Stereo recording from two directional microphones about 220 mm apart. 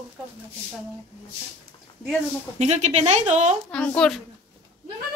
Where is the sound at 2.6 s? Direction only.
30° right (ahead or behind).